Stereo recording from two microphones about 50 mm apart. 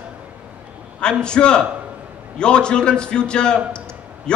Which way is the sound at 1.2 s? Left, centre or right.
Centre.